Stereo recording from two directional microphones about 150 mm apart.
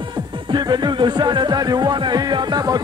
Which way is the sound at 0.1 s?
30° right (ahead or behind).